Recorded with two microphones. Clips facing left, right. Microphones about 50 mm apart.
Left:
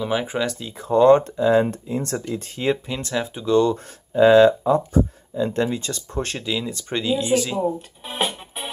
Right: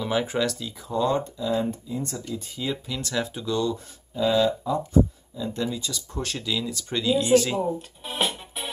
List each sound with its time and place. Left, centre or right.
0.0 s speech: centre
0.7 s speech: left
2.9 s speech: left
3.4 s speech: left
5.3 s speech: left
7.2 s speech: centre
8.3 s music: centre